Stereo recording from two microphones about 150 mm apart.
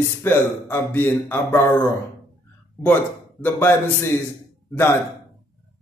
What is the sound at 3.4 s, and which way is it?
Speech, 15° left (ahead or behind).